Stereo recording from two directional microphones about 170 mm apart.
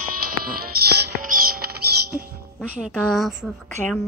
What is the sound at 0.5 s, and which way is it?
Music, 60° right (ahead or behind).